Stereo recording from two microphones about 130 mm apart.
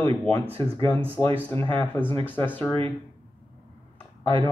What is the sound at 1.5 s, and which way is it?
Speech, 10° left (ahead or behind).